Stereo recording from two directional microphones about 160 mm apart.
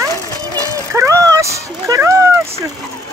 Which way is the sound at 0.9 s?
20° right (ahead or behind).